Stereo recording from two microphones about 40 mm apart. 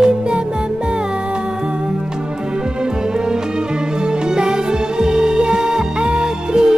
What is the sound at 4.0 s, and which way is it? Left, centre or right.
Music, right.